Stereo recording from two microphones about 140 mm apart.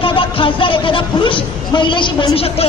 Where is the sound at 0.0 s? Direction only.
40° left (ahead or behind).